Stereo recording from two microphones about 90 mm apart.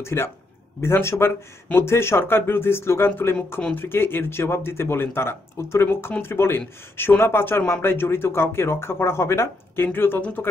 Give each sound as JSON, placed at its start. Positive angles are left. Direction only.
{"t": 0.0, "sound": "speech", "side_deg": 30}